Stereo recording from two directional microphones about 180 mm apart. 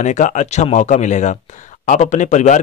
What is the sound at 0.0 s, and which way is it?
Speech, 40° left (ahead or behind).